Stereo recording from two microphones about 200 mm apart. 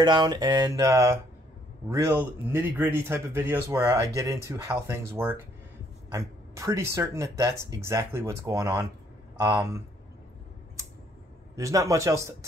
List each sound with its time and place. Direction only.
0.0 s a sound: 20° right (ahead or behind)
1.9 s a man's voice: 10° right (ahead or behind)
11.5 s a man's voice: 15° right (ahead or behind)